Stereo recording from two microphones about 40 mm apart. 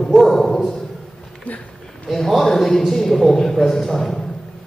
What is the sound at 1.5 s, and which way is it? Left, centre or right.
Speech, left.